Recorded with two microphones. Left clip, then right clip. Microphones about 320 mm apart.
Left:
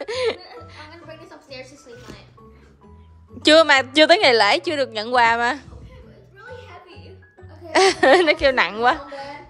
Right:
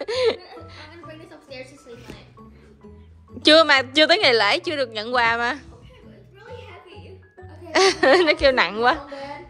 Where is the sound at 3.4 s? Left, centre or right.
Centre.